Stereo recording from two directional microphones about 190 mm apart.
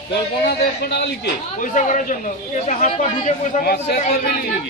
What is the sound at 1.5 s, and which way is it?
Speech, 40° left (ahead or behind).